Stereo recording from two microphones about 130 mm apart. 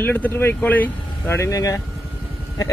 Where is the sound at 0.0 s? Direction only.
15° left (ahead or behind).